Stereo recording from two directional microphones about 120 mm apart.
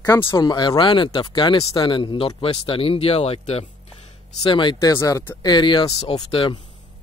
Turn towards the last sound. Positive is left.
turn(degrees=50)  # may be behind; listen again after turning